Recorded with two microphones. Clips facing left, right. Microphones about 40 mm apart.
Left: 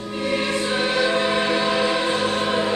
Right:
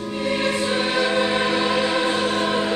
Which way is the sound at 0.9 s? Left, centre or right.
Centre.